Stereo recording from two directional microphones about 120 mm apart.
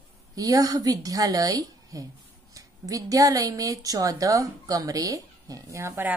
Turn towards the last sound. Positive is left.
turn(degrees=-25)  # may be behind; listen again after turning